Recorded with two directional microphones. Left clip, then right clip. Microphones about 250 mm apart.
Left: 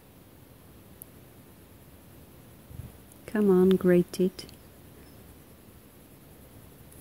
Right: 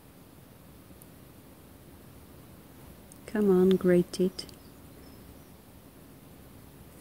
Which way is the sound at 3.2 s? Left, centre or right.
Centre.